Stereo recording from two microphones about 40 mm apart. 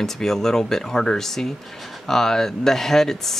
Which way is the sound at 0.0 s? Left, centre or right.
Centre.